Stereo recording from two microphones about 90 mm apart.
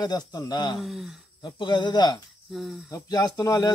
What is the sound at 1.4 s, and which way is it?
Speech, 60° left (ahead or behind).